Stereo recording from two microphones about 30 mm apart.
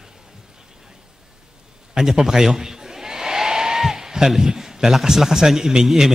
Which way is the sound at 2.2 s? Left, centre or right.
Centre.